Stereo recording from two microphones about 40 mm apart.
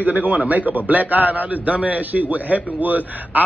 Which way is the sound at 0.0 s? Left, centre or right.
Right.